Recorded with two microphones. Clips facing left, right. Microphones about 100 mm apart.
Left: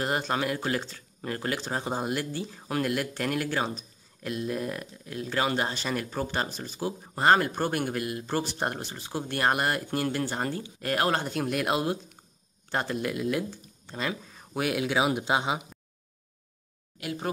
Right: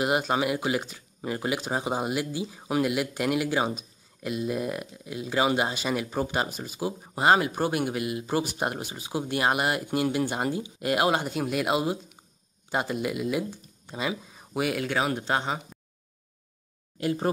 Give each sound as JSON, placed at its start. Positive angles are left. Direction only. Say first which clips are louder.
{"t": 0.0, "sound": "speech", "louder": "right 3 dB", "side_deg": -10}
{"t": 17.0, "sound": "speech", "louder": "right 7 dB", "side_deg": -35}